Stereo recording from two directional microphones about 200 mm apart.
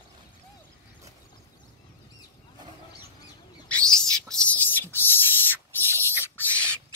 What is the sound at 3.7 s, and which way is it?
Bird, 5° left (ahead or behind).